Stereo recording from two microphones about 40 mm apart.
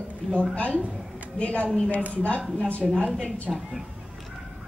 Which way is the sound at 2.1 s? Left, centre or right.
Left.